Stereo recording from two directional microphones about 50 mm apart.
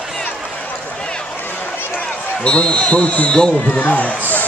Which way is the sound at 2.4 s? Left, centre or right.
Left.